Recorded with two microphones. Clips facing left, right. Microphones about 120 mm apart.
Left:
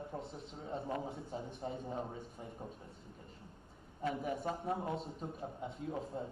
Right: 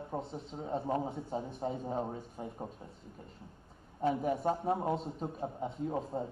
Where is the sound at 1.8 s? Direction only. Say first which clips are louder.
Right 6 dB; 35° right (ahead or behind).